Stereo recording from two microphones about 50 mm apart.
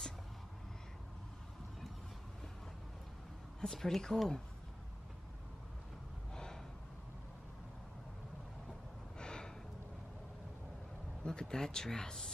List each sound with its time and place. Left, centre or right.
3.6 s speech: centre
6.3 s gasp: centre
9.2 s gasp: centre
11.2 s speech: centre